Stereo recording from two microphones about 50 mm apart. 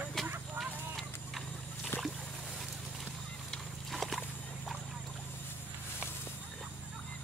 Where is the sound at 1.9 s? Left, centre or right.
Left.